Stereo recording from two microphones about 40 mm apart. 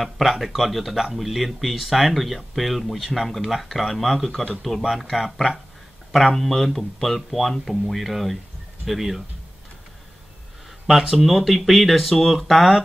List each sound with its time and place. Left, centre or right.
0.0 s speech: centre
10.9 s speech: centre